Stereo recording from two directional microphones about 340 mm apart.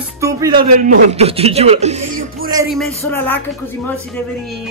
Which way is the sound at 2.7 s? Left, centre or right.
Centre.